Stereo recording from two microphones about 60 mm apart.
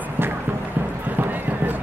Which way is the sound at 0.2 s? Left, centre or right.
Right.